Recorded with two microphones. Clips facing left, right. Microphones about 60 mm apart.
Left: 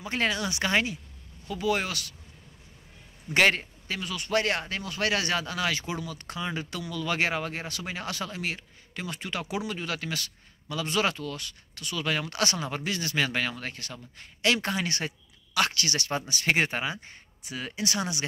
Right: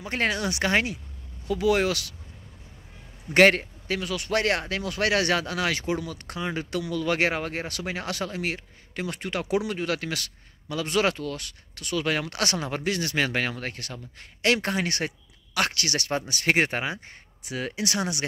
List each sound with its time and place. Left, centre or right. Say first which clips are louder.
0.0 s speech: right 2 dB; right
1.5 s speech: right 5 dB; right
3.3 s speech: right 5 dB; right